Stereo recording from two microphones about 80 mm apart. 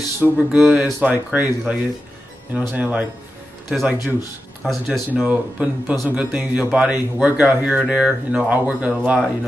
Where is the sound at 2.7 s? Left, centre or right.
Centre.